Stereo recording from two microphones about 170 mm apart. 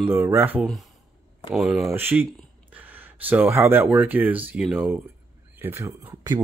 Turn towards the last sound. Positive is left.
turn(degrees=-20)  # may be behind; listen again after turning